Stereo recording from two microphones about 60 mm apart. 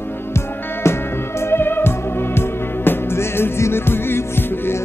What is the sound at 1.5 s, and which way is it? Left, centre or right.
Music, left.